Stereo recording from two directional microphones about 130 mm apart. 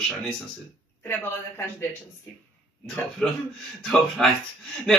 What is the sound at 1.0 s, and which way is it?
Speech, 20° left (ahead or behind).